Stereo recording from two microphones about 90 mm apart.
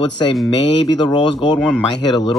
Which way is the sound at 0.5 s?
55° left (ahead or behind).